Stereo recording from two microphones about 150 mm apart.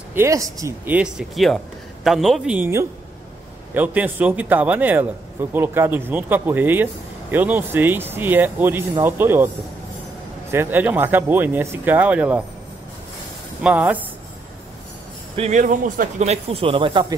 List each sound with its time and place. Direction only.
0.1 s speech: 20° right (ahead or behind)
10.5 s speech: 15° right (ahead or behind)
13.6 s speech: 10° right (ahead or behind)
15.3 s speech: 50° right (ahead or behind)